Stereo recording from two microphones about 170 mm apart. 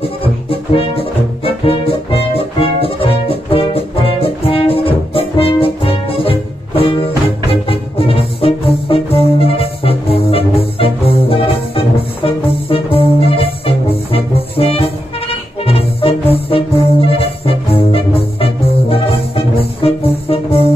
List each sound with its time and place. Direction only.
0.0 s music: 35° left (ahead or behind)